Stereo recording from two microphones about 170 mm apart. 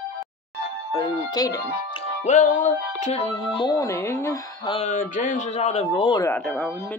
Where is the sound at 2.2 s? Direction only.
45° left (ahead or behind).